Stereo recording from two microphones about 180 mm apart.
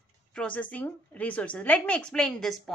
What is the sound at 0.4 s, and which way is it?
A woman's voice, 10° left (ahead or behind).